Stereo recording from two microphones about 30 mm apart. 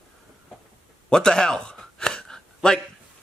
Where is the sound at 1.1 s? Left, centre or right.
Left.